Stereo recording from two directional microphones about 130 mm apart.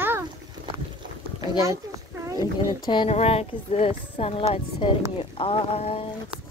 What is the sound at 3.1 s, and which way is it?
Speech, 50° left (ahead or behind).